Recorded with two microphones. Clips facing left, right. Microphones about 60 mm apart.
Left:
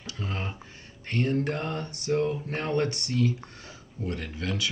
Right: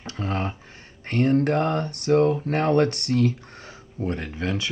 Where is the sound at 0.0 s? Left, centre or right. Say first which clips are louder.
Right 7 dB; right.